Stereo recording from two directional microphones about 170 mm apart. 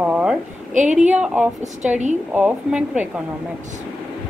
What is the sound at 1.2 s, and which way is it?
Speech, 10° right (ahead or behind).